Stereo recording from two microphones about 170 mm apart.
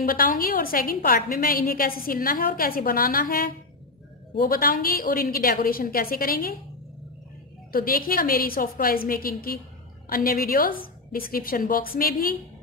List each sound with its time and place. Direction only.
0.0 s a woman's voice: 60° left (ahead or behind)
7.7 s a woman's voice: 60° left (ahead or behind)